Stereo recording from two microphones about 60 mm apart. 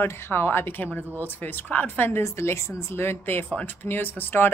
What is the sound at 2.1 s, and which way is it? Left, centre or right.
A woman's voice, left.